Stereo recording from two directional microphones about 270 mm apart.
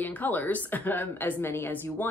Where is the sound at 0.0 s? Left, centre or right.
Centre.